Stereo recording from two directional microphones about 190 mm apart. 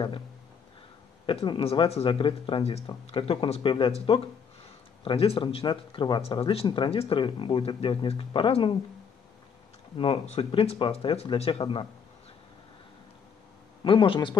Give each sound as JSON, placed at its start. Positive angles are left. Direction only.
{"t": 1.2, "sound": "speech", "side_deg": 25}
{"t": 9.9, "sound": "speech", "side_deg": 30}
{"t": 13.8, "sound": "speech", "side_deg": 25}